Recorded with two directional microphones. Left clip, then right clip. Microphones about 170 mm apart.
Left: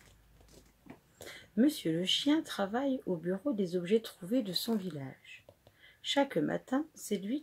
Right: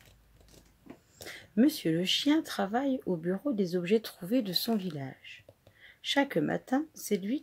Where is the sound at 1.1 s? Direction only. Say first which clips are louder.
Right 3 dB; 45° right (ahead or behind).